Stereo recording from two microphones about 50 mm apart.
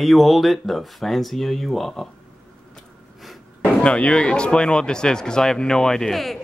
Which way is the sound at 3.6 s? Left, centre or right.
Left.